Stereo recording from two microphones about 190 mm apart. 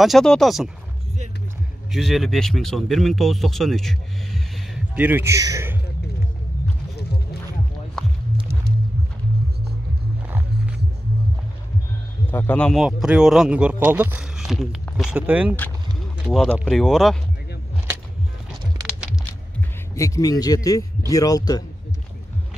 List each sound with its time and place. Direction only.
0.0 s speech: centre (ahead or behind)
1.9 s speech: centre (ahead or behind)
4.9 s a man's voice: 10° right (ahead or behind)
12.3 s a man's voice: 10° left (ahead or behind)
20.0 s a man's voice: 20° left (ahead or behind)